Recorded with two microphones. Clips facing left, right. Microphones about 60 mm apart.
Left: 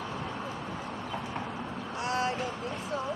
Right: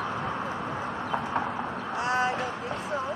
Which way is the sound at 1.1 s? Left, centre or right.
Right.